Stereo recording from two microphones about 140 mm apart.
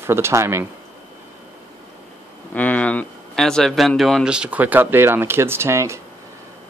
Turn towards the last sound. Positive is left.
turn(degrees=-20)  # may be behind; listen again after turning